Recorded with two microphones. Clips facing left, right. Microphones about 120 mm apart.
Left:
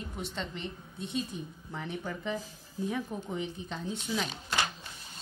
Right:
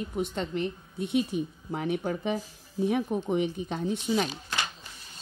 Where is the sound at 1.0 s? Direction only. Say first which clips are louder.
Right 8 dB; 65° right (ahead or behind).